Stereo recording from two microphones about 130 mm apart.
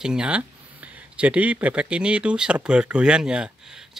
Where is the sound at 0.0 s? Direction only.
5° right (ahead or behind).